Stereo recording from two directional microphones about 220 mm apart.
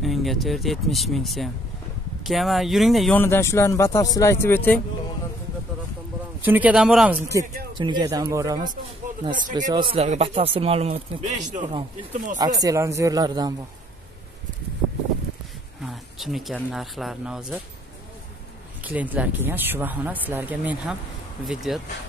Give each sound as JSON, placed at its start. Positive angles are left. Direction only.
{"t": 0.0, "sound": "speech", "side_deg": 0}
{"t": 6.4, "sound": "speech", "side_deg": -10}
{"t": 7.2, "sound": "speech", "side_deg": -15}
{"t": 11.6, "sound": "speech", "side_deg": -20}
{"t": 15.8, "sound": "speech", "side_deg": 0}
{"t": 18.9, "sound": "speech", "side_deg": -5}